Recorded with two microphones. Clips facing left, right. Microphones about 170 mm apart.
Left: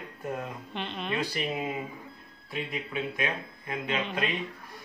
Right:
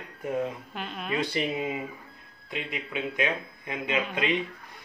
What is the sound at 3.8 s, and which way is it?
Speech, 10° right (ahead or behind).